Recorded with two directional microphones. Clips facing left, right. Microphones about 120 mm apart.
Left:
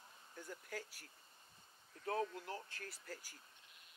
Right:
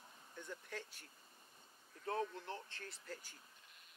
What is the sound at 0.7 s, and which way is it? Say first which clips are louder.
Speech: left 1 dB; 25° right (ahead or behind).